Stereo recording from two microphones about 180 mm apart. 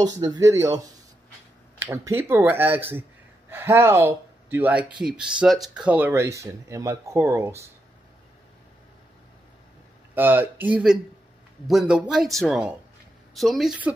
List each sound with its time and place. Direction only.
0.2 s speech: 20° right (ahead or behind)
10.1 s speech: 10° right (ahead or behind)